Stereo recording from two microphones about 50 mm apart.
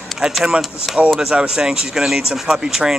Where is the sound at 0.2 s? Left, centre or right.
Centre.